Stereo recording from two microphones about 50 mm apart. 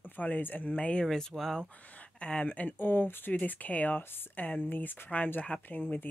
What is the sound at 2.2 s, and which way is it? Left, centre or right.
Speech, left.